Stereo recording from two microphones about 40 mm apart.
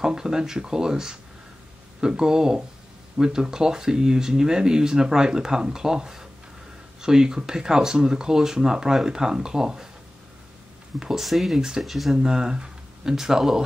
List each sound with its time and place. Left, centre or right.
0.0 s speech: centre
11.0 s speech: centre
11.5 s speech: centre
11.8 s speech: centre
12.2 s speech: centre